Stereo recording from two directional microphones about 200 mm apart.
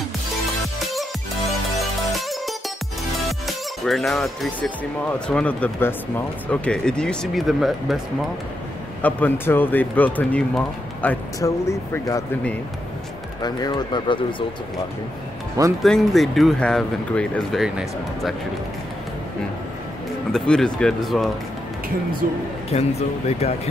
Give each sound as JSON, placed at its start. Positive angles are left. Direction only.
{"t": 1.8, "sound": "music", "side_deg": 0}
{"t": 5.3, "sound": "speech", "side_deg": 5}
{"t": 9.0, "sound": "speech", "side_deg": 10}
{"t": 13.4, "sound": "speech", "side_deg": 20}
{"t": 15.8, "sound": "speech", "side_deg": 0}
{"t": 20.3, "sound": "speech", "side_deg": 5}
{"t": 22.2, "sound": "speech", "side_deg": -45}
{"t": 22.7, "sound": "speech", "side_deg": 35}